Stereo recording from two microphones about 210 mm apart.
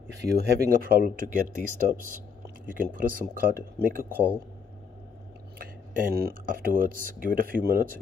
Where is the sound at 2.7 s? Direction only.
40° right (ahead or behind).